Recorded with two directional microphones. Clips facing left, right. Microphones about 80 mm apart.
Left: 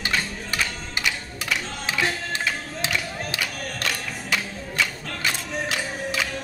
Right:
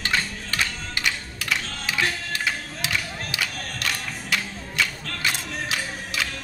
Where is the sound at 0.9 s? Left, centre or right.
Left.